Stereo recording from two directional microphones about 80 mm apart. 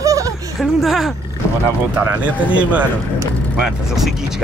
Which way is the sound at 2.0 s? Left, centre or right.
Centre.